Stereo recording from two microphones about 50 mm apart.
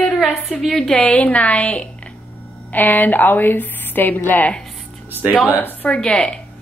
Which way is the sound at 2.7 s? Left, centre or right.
Left.